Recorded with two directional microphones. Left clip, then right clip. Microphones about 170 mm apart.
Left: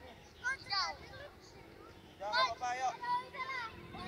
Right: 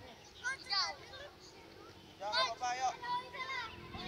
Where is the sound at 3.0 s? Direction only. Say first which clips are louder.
Left 2 dB; 35° right (ahead or behind).